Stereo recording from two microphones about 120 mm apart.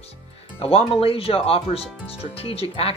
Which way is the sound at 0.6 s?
50° left (ahead or behind).